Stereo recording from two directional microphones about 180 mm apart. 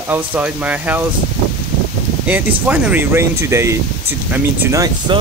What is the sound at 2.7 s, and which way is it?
Speech, 10° right (ahead or behind).